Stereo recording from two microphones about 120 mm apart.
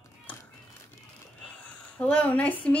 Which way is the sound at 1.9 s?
15° left (ahead or behind).